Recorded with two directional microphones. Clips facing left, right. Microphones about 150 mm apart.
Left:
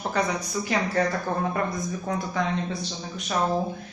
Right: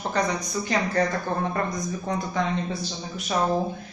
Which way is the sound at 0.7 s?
5° left (ahead or behind).